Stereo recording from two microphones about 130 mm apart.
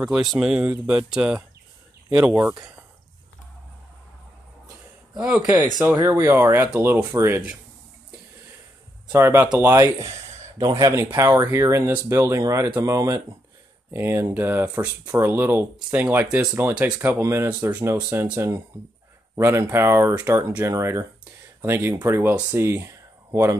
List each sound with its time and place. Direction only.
0.0 s speech: 5° right (ahead or behind)
5.2 s speech: 10° right (ahead or behind)
9.1 s speech: 20° right (ahead or behind)